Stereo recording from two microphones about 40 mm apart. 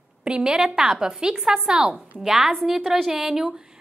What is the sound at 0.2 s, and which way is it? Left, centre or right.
A woman's voice, right.